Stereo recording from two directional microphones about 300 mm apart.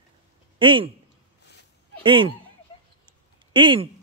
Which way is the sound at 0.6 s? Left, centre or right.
Centre.